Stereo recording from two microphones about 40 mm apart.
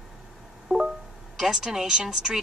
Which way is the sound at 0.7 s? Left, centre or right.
Centre.